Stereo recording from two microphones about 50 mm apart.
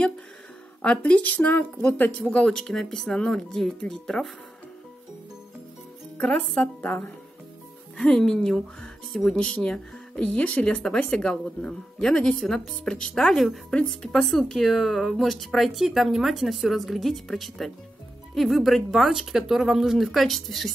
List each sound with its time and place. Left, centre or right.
0.8 s speech: left
2.3 s speech: centre
6.1 s speech: left
6.8 s speech: left
8.0 s speech: centre